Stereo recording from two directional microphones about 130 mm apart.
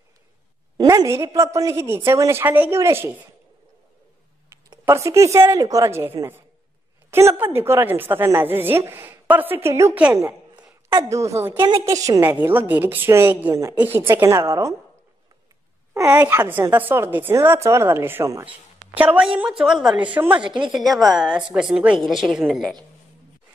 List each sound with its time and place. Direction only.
0.7 s a woman's voice: 25° right (ahead or behind)
4.8 s a woman's voice: 25° right (ahead or behind)
12.3 s a woman's voice: 15° right (ahead or behind)
15.9 s a woman's voice: 20° right (ahead or behind)
20.4 s speech: 35° right (ahead or behind)
20.7 s a woman's voice: centre (ahead or behind)